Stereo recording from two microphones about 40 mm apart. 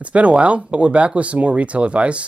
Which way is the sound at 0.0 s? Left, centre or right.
Right.